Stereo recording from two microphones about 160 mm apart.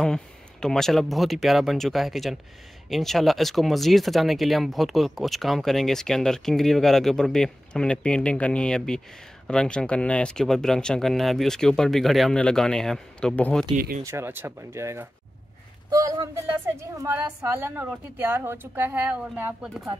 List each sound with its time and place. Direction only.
0.0 s speech: 5° left (ahead or behind)
13.7 s speech: 60° right (ahead or behind)
14.0 s a woman's voice: 15° right (ahead or behind)